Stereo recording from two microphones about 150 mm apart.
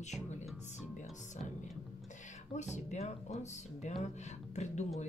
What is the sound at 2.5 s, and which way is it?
Speech, 55° left (ahead or behind).